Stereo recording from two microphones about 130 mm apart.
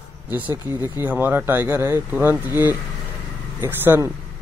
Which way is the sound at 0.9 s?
15° right (ahead or behind).